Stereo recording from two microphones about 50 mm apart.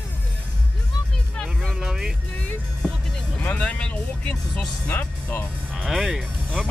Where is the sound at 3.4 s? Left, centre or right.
Left.